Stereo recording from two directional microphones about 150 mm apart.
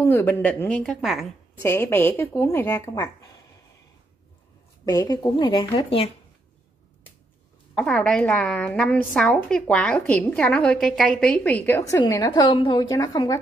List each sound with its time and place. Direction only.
0.0 s a woman's voice: 15° left (ahead or behind)
1.6 s a woman's voice: 15° left (ahead or behind)
4.8 s a woman's voice: 25° left (ahead or behind)
7.7 s a woman's voice: 5° left (ahead or behind)
12.2 s a woman's voice: 30° left (ahead or behind)